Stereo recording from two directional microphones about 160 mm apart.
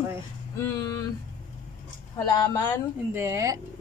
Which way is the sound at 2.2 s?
25° left (ahead or behind).